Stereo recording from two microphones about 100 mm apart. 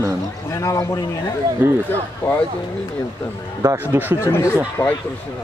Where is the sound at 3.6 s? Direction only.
30° right (ahead or behind).